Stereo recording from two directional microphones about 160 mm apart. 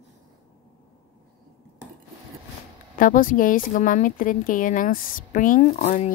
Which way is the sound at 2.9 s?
60° left (ahead or behind).